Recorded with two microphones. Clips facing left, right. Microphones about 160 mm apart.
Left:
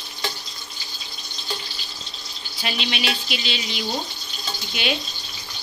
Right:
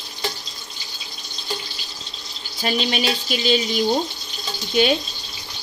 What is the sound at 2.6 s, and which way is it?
Speech, 40° right (ahead or behind).